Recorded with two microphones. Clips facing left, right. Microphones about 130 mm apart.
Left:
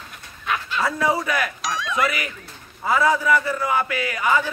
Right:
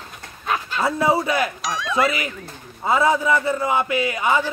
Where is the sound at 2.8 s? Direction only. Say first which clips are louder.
Right 1 dB; 25° right (ahead or behind).